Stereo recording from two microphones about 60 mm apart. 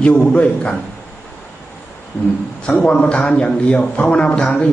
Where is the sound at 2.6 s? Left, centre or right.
Centre.